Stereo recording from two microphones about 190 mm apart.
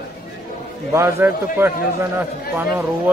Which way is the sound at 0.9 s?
15° right (ahead or behind).